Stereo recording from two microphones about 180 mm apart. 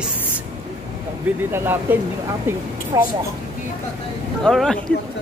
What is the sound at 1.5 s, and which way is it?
A woman's voice, 10° right (ahead or behind).